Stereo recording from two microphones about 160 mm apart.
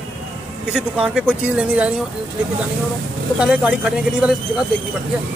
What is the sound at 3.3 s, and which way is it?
Speech, 5° right (ahead or behind).